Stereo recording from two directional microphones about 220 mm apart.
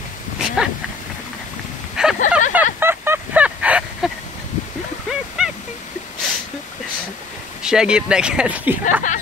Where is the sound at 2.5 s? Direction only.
10° right (ahead or behind).